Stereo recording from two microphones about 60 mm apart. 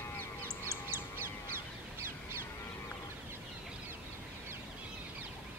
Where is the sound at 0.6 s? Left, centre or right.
Right.